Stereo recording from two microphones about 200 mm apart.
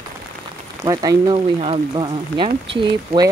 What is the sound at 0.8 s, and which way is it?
A woman's voice, 20° right (ahead or behind).